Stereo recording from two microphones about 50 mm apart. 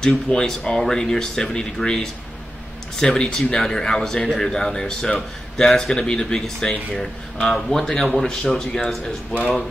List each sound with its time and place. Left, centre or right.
0.3 s speech: left
0.7 s speech: centre
5.9 s speech: centre